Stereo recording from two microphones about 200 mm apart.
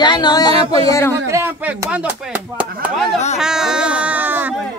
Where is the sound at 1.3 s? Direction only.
15° right (ahead or behind).